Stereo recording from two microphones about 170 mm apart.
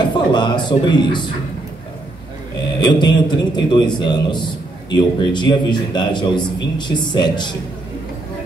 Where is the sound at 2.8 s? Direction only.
25° left (ahead or behind).